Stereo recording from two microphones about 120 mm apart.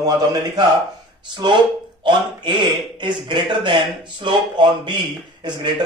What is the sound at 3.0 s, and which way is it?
Speech, 40° right (ahead or behind).